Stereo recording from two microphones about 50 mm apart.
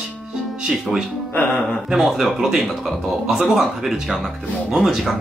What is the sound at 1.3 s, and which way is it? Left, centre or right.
Speech, left.